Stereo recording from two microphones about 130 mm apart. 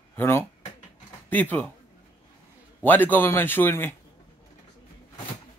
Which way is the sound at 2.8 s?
15° left (ahead or behind).